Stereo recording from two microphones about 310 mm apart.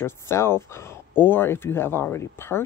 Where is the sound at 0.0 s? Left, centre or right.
Centre.